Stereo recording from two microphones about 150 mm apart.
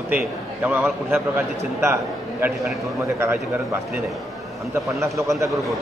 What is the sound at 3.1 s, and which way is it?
Speech, 15° right (ahead or behind).